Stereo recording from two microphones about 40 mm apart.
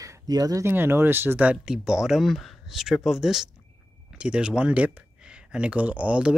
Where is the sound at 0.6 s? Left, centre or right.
Right.